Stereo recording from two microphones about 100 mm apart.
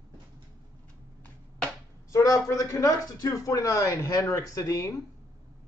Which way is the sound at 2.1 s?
30° left (ahead or behind).